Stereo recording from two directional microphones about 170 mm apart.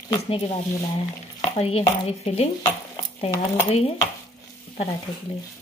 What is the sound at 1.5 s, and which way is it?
Speech, 35° left (ahead or behind).